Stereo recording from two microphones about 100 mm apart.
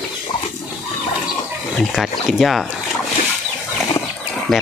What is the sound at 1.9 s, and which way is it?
Speech, centre (ahead or behind).